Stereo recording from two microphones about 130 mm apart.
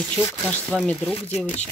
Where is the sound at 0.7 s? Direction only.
10° left (ahead or behind).